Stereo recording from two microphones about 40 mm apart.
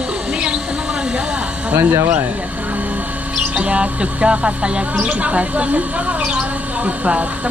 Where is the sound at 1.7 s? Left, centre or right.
Right.